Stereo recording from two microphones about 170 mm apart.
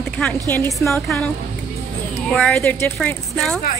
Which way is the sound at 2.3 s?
Centre (ahead or behind).